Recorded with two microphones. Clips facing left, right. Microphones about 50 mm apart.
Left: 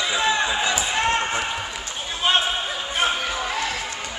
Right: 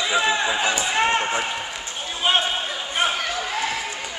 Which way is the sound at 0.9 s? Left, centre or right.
Centre.